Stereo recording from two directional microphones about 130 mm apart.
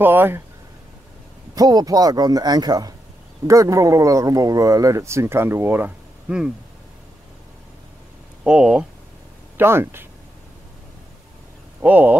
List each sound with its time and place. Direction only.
0.0 s speech: 15° right (ahead or behind)
1.5 s speech: 30° right (ahead or behind); by 6.5 s 5° right (ahead or behind)
8.5 s speech: 5° right (ahead or behind)
9.6 s speech: 20° right (ahead or behind)
11.8 s speech: 10° right (ahead or behind)